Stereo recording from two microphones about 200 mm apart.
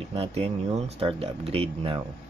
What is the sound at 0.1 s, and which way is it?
Speech, 30° right (ahead or behind).